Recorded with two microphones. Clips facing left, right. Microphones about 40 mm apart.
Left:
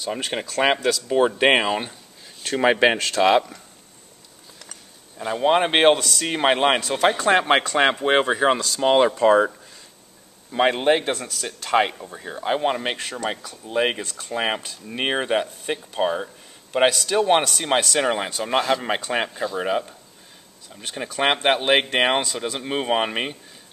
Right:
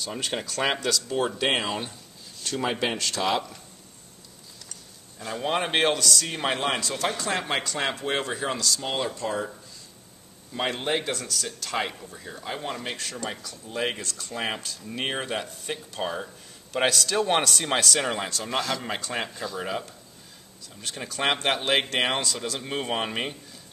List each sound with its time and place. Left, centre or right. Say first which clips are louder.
0.0 s speech: left 4 dB; centre
1.0 s speech: left 11 dB; left
1.4 s a man's voice: left 7 dB; left
2.6 s speech: left 10 dB; left
5.2 s a man's voice: left 8 dB; left
8.8 s speech: left 16 dB; left
9.2 s speech: left 13 dB; left
10.5 s a man's voice: left 9 dB; left